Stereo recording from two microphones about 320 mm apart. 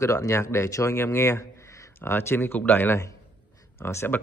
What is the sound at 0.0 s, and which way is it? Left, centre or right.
A man's voice, centre.